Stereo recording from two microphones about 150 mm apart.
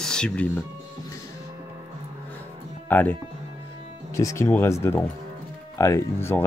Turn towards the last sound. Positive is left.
turn(degrees=15)  # may be behind; listen again after turning